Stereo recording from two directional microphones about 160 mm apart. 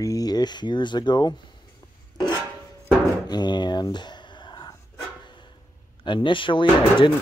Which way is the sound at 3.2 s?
25° left (ahead or behind).